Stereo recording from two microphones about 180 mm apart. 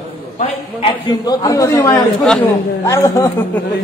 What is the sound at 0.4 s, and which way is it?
A man's voice, 30° left (ahead or behind).